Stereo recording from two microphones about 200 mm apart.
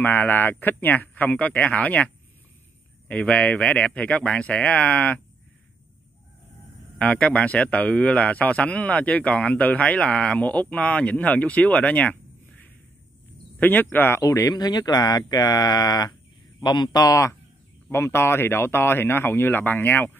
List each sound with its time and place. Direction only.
0.0 s a man's voice: 10° left (ahead or behind)
3.1 s a man's voice: 5° left (ahead or behind)
7.0 s a man's voice: 5° left (ahead or behind)
13.6 s a man's voice: 10° left (ahead or behind)